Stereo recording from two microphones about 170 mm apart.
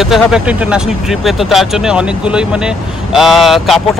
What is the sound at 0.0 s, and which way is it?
Speech, centre (ahead or behind).